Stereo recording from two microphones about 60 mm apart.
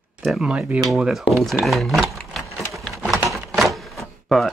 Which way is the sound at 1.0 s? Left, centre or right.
Centre.